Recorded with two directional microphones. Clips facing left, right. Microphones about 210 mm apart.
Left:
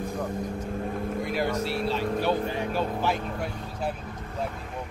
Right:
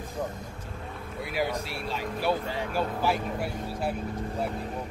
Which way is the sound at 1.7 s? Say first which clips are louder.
Left 7 dB; 40° left (ahead or behind).